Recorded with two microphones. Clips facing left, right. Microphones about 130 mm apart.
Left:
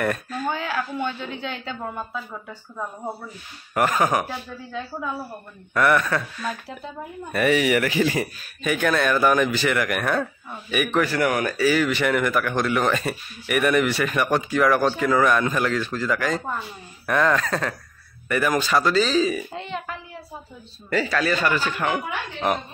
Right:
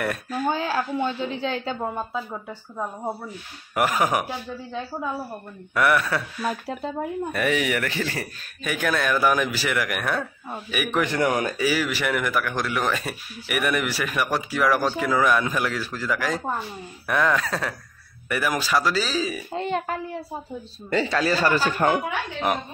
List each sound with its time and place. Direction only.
0.0 s speech: 5° right (ahead or behind)
0.5 s a woman's voice: 30° right (ahead or behind)
3.7 s speech: 10° right (ahead or behind)
5.8 s speech: 5° right (ahead or behind)
7.3 s speech: centre (ahead or behind)
8.6 s speech: centre (ahead or behind)
11.1 s speech: 20° right (ahead or behind); by 19.4 s 5° right (ahead or behind)
19.5 s a child's voice: 45° right (ahead or behind)
20.9 s speech: 25° right (ahead or behind)